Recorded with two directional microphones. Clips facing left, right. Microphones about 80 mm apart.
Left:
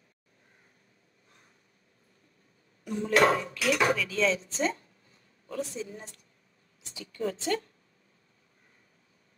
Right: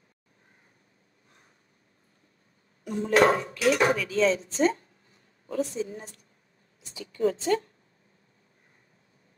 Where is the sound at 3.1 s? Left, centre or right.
Right.